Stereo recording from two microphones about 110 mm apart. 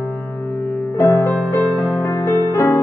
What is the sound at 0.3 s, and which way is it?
Music, 15° left (ahead or behind).